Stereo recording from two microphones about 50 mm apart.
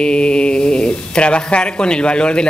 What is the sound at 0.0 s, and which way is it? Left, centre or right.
Speech, centre.